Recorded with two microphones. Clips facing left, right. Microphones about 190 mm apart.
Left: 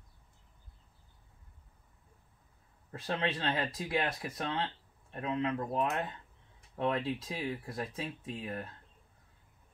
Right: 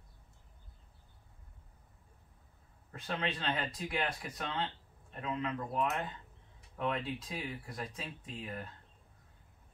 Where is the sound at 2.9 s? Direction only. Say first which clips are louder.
Left 3 dB; 30° left (ahead or behind).